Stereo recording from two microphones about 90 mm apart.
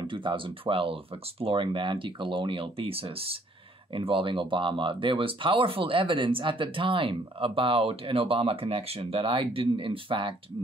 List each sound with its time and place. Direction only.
0.0 s speech: 65° right (ahead or behind); by 3.3 s 90° right
3.9 s speech: 75° right (ahead or behind)